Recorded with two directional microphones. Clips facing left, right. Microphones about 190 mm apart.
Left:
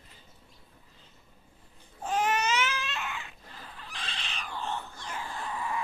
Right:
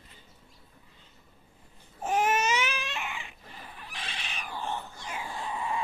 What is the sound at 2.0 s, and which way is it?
Baby cry, 20° right (ahead or behind).